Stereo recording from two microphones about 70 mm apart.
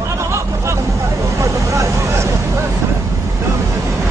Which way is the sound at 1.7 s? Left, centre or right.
Right.